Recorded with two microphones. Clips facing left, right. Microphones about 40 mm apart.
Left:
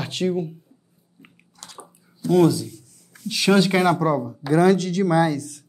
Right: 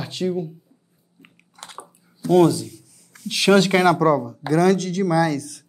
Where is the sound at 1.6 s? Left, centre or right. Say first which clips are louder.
Right 4 dB; right.